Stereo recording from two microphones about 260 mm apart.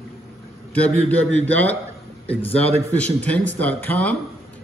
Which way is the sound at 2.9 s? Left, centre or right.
Centre.